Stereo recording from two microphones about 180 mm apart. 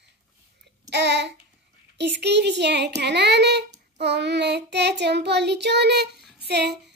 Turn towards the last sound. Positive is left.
turn(degrees=-65)  # may be behind; listen again after turning